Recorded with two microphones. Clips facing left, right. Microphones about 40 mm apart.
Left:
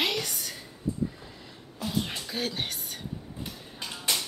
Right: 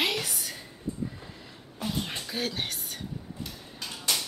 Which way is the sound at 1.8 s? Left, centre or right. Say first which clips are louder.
Right 1 dB; right.